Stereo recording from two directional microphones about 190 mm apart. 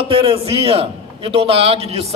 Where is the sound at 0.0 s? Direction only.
30° right (ahead or behind).